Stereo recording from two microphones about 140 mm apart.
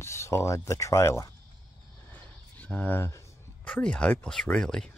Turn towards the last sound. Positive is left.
turn(degrees=5)  # may be behind; listen again after turning